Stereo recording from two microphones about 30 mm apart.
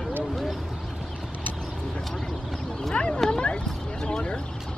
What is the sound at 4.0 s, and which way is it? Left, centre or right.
Speech, left.